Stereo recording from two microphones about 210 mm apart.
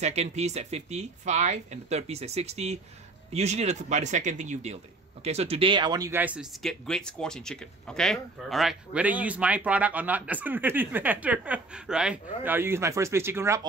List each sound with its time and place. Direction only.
0.0 s speech: 30° right (ahead or behind); by 13.6 s 10° right (ahead or behind)